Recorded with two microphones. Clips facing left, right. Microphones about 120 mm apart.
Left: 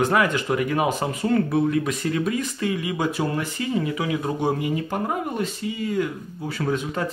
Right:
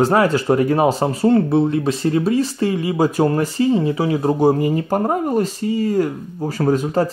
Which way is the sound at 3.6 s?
30° right (ahead or behind).